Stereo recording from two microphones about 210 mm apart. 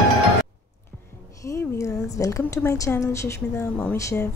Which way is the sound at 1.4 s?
15° left (ahead or behind).